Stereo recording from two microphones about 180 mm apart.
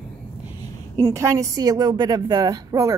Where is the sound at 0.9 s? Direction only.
15° right (ahead or behind).